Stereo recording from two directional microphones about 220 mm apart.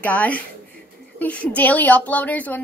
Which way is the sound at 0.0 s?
5° left (ahead or behind).